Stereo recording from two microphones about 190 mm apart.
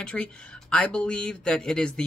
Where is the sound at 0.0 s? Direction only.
5° left (ahead or behind).